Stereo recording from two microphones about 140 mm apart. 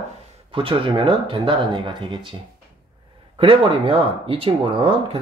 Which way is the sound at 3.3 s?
40° right (ahead or behind).